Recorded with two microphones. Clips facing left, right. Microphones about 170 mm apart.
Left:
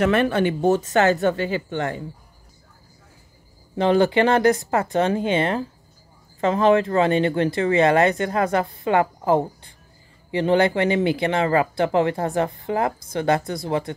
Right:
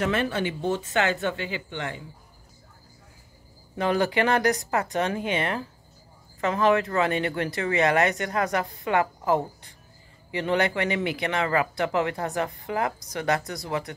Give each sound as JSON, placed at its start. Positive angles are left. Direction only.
{"t": 0.0, "sound": "speech", "side_deg": 60}
{"t": 3.7, "sound": "speech", "side_deg": 30}